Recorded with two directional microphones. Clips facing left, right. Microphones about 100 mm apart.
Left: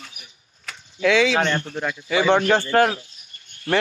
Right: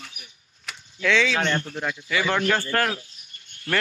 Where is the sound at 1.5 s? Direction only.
35° left (ahead or behind).